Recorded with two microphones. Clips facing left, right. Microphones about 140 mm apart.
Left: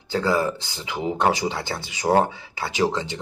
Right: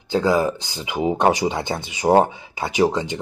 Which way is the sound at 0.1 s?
15° right (ahead or behind).